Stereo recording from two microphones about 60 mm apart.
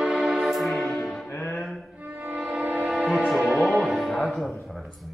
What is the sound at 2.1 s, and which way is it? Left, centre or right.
Music, right.